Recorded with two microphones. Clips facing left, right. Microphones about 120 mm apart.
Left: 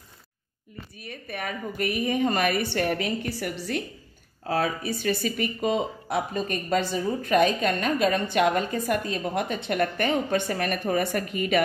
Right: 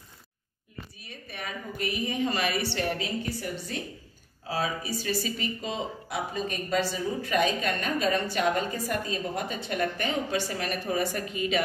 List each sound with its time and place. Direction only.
1.0 s speech: 50° left (ahead or behind); by 3.8 s 70° left (ahead or behind)
4.5 s speech: 55° left (ahead or behind)